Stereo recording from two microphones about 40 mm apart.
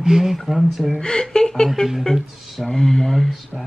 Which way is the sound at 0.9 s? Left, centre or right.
Centre.